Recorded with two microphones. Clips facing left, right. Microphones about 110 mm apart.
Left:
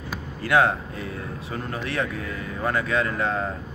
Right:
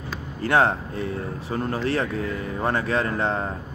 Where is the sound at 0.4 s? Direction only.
30° right (ahead or behind).